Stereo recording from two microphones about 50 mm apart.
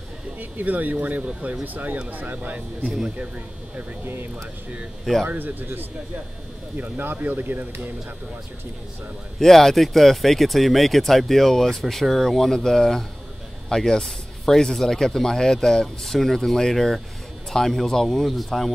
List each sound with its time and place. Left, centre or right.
0.4 s speech: right
4.0 s speech: right
5.2 s speech: right
9.4 s speech: centre